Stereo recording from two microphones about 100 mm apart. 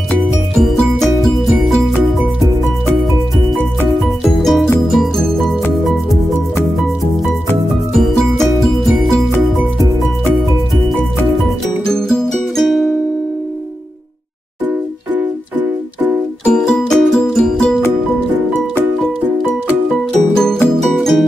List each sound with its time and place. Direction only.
0.6 s music: centre (ahead or behind)
4.2 s music: 5° left (ahead or behind)
7.9 s music: centre (ahead or behind)
11.8 s music: 5° left (ahead or behind)
15.1 s music: 20° right (ahead or behind)
16.4 s music: 5° left (ahead or behind)
20.1 s music: 5° left (ahead or behind)